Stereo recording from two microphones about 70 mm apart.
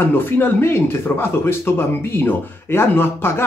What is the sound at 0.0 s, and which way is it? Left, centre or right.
Speech, left.